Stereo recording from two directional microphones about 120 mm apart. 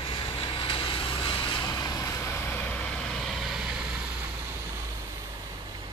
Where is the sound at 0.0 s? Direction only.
45° left (ahead or behind); by 2.9 s 10° left (ahead or behind).